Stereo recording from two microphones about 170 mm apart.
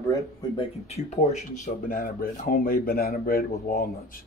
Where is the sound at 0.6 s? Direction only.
40° left (ahead or behind).